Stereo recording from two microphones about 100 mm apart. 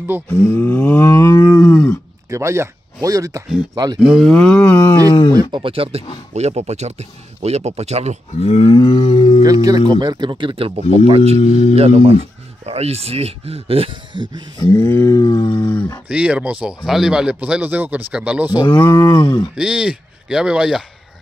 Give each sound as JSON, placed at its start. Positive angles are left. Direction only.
{"t": 0.3, "sound": "a sound", "side_deg": 20}
{"t": 2.2, "sound": "speech", "side_deg": -30}
{"t": 4.0, "sound": "speech", "side_deg": 0}
{"t": 4.5, "sound": "speech", "side_deg": 20}
{"t": 5.3, "sound": "speech", "side_deg": -45}
{"t": 5.6, "sound": "speech", "side_deg": -65}
{"t": 6.3, "sound": "speech", "side_deg": -90}
{"t": 8.4, "sound": "livestock", "side_deg": 85}
{"t": 9.4, "sound": "speech", "side_deg": -40}
{"t": 11.1, "sound": "speech", "side_deg": -85}
{"t": 14.7, "sound": "a sound", "side_deg": 25}
{"t": 16.1, "sound": "speech", "side_deg": -10}
{"t": 18.8, "sound": "a sound", "side_deg": 20}
{"t": 19.5, "sound": "speech", "side_deg": -10}